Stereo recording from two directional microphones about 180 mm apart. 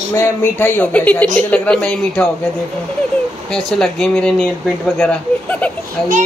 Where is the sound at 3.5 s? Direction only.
5° left (ahead or behind).